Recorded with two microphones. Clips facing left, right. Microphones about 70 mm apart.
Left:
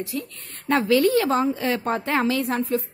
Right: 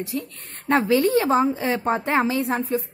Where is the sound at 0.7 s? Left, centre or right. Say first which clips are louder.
Even; right.